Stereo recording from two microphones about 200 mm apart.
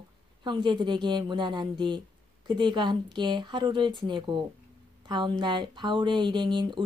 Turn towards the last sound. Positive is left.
turn(degrees=-25)  # may be behind; listen again after turning